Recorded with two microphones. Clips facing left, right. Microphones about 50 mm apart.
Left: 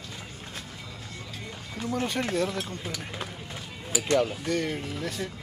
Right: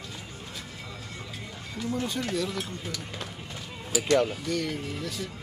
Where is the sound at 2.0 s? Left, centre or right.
Left.